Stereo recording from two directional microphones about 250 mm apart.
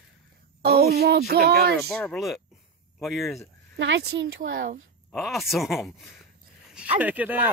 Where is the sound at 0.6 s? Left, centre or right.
Right.